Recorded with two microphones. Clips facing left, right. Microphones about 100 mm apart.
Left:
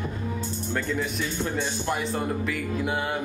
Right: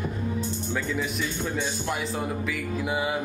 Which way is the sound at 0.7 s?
Centre (ahead or behind).